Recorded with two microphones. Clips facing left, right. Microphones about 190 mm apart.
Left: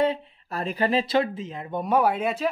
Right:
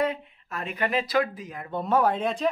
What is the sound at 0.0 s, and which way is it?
Speech, 30° left (ahead or behind).